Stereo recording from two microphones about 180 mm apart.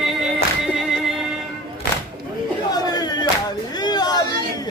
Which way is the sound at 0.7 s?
Centre (ahead or behind).